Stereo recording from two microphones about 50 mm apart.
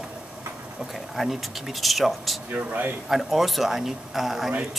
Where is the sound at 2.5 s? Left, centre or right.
Right.